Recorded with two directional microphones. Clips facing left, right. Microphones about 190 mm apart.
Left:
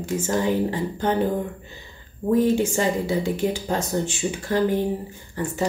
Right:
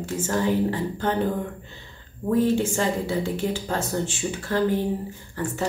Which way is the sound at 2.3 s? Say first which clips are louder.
Left 2 dB; 15° left (ahead or behind).